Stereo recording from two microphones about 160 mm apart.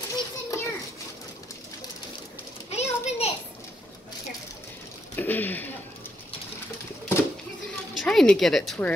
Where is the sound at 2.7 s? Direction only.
40° left (ahead or behind).